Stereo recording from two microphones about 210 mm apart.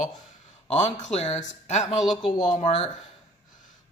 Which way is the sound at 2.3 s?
20° left (ahead or behind).